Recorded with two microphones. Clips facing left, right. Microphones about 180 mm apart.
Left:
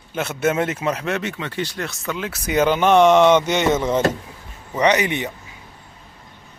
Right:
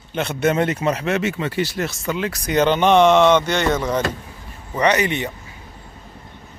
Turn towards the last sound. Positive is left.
turn(degrees=15)  # may be behind; listen again after turning